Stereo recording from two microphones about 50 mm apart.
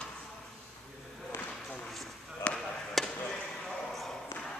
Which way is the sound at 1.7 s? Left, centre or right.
Centre.